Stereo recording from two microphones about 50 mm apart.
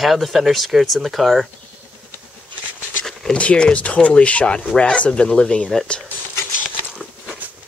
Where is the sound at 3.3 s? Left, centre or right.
Left.